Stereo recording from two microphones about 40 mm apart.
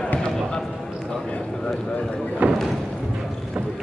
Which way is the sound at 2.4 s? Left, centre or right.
Right.